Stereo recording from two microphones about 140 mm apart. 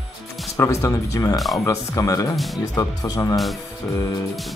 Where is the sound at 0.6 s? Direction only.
20° left (ahead or behind).